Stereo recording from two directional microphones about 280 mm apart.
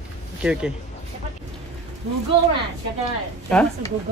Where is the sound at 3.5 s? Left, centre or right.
Centre.